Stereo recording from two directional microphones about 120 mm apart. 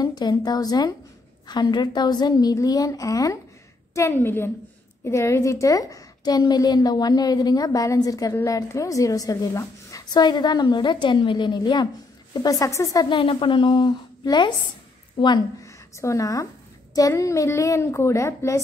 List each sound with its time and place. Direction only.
0.0 s a woman's voice: 35° left (ahead or behind)
13.1 s a woman's voice: 45° left (ahead or behind)
16.0 s a woman's voice: 25° left (ahead or behind)